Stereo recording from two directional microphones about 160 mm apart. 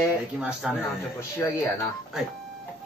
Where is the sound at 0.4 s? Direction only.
5° right (ahead or behind).